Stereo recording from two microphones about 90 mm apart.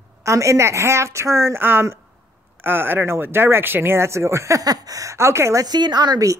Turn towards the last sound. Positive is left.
turn(degrees=-45)  # may be behind; listen again after turning